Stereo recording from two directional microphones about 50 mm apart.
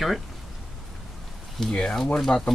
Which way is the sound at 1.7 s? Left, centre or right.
Left.